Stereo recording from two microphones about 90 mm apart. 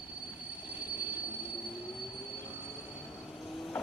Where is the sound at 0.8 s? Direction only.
20° right (ahead or behind).